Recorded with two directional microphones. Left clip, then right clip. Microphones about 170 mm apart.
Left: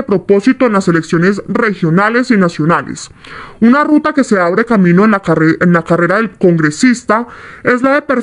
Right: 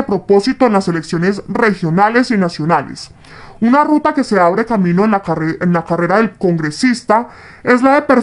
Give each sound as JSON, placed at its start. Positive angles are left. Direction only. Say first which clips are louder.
{"t": 0.1, "sound": "speech", "louder": "left 3 dB", "side_deg": 10}
{"t": 3.9, "sound": "speech", "louder": "left 2 dB", "side_deg": 20}